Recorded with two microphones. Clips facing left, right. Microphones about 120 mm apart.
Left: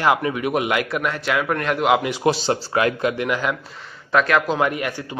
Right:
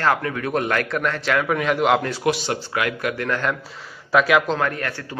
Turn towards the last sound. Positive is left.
turn(degrees=15)  # may be behind; listen again after turning